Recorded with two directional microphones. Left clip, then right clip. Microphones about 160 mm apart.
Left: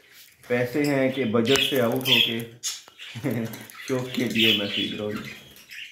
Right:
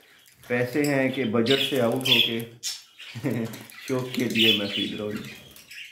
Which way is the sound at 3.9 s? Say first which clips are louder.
Even; 5° left (ahead or behind).